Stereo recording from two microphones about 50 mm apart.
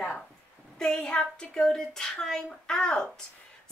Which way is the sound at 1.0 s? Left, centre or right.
Centre.